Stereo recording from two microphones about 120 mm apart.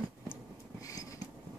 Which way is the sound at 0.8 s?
30° left (ahead or behind).